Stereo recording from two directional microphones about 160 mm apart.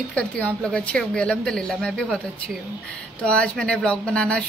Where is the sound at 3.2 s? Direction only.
5° left (ahead or behind).